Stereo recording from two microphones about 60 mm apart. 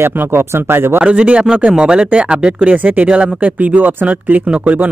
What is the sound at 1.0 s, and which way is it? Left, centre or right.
Speech, centre.